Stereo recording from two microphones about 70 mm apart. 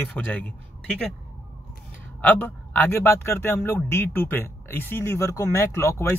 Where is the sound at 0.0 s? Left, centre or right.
Left.